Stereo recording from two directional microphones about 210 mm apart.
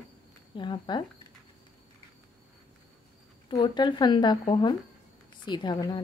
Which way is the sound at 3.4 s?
20° left (ahead or behind).